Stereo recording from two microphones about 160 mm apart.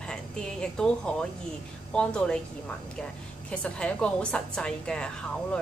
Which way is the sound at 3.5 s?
5° left (ahead or behind).